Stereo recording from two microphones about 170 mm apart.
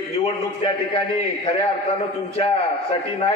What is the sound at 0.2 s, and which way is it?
A man's voice, 30° left (ahead or behind).